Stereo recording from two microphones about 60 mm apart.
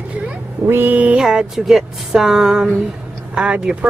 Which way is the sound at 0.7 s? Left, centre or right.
Right.